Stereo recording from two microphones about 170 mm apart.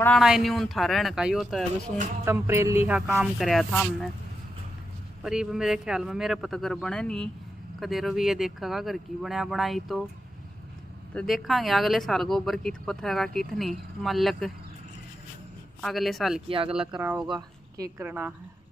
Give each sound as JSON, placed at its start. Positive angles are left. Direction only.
{"t": 0.2, "sound": "speech", "side_deg": 0}
{"t": 2.2, "sound": "speech", "side_deg": -15}
{"t": 5.2, "sound": "speech", "side_deg": -5}
{"t": 11.1, "sound": "speech", "side_deg": 0}
{"t": 15.8, "sound": "speech", "side_deg": 0}
{"t": 16.4, "sound": "speech", "side_deg": -30}
{"t": 16.7, "sound": "speech", "side_deg": -5}
{"t": 17.3, "sound": "a woman's voice", "side_deg": -20}